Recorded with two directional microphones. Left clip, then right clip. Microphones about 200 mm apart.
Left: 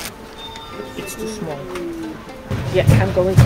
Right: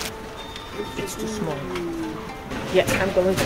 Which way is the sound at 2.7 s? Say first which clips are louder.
Left 1 dB; centre (ahead or behind).